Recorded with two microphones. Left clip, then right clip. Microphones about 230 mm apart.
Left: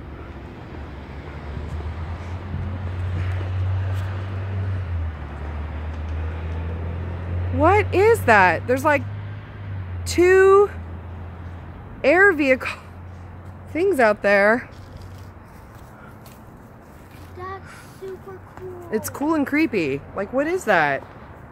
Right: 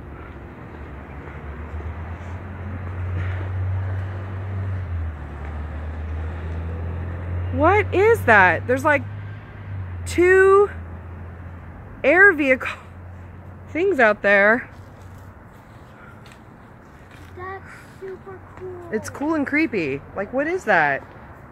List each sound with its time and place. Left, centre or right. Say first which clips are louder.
7.6 s speech: even; centre
10.0 s speech: even; centre
12.0 s speech: right 1 dB; centre
13.7 s speech: right 1 dB; centre
17.4 s a sound: even; right
18.9 s speech: left 2 dB; centre